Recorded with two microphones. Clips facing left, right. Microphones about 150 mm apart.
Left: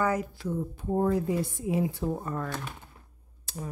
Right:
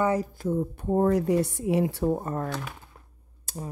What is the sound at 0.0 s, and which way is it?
Speech, 30° right (ahead or behind).